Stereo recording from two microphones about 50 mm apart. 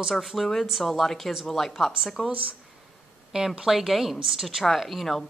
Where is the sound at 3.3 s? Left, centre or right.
Centre.